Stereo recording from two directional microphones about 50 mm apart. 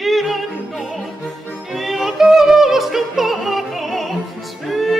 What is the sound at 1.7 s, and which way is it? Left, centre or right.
Music, centre.